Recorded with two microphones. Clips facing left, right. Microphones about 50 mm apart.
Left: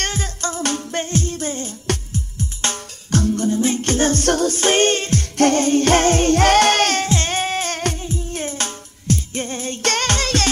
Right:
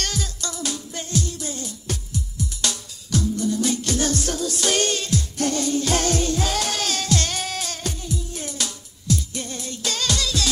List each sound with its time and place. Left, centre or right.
0.0 s music: left
3.4 s music: left
7.1 s music: left
8.0 s music: left
9.8 s music: left